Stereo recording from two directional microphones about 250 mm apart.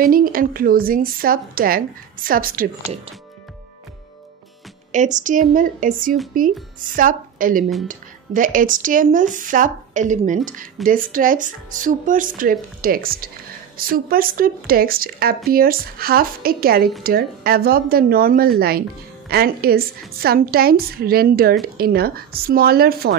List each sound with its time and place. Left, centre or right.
0.0 s speech: right
4.9 s a woman's voice: right